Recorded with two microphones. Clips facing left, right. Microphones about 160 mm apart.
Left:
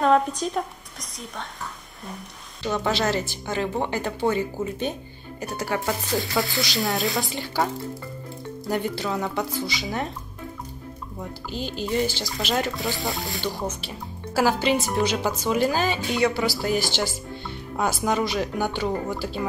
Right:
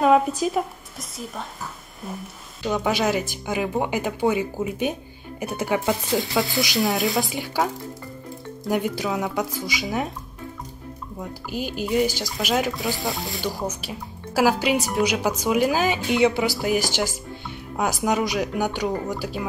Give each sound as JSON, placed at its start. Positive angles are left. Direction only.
{"t": 0.0, "sound": "a woman's voice", "side_deg": -5}
{"t": 6.3, "sound": "speech", "side_deg": 0}
{"t": 8.6, "sound": "speech", "side_deg": -10}
{"t": 11.4, "sound": "speech", "side_deg": -10}
{"t": 13.6, "sound": "speech", "side_deg": -10}
{"t": 17.7, "sound": "speech", "side_deg": -10}